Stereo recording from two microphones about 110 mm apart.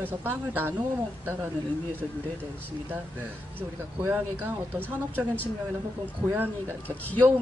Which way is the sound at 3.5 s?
15° right (ahead or behind).